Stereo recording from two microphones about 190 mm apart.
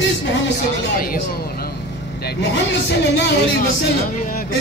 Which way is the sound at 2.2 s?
65° left (ahead or behind).